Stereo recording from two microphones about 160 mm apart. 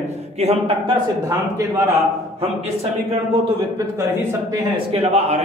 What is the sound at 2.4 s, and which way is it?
A man's voice, 40° right (ahead or behind).